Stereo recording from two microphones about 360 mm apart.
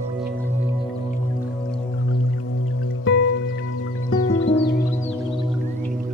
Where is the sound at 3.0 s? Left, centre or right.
Left.